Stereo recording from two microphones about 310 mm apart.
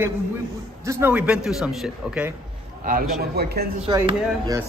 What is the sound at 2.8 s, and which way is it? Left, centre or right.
Speech, right.